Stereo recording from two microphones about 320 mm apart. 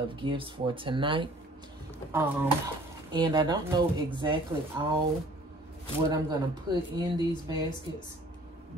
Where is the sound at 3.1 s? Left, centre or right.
Centre.